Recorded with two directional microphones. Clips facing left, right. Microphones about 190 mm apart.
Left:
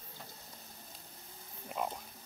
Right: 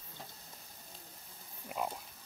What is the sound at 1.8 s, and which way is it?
Frog, 5° right (ahead or behind).